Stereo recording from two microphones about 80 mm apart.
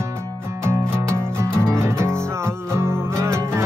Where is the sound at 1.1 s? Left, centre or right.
Right.